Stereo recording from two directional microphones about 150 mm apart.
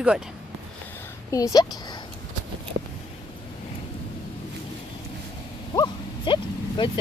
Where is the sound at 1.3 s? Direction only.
25° left (ahead or behind).